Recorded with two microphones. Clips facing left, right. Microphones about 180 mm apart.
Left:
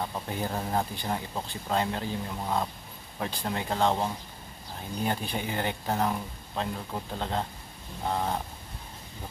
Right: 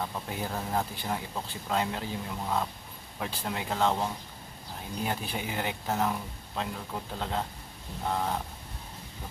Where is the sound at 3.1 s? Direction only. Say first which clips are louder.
Left 2 dB; 5° right (ahead or behind).